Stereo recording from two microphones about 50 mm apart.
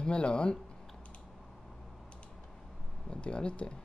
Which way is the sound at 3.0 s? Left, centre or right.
Centre.